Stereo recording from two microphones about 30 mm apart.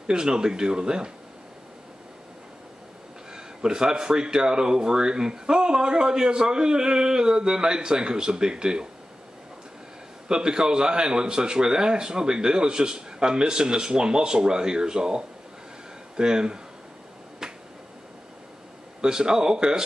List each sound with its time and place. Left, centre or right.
0.0 s a man's voice: right
3.3 s a man's voice: right
10.2 s a man's voice: right
17.4 s finger snapping: right
18.9 s a man's voice: right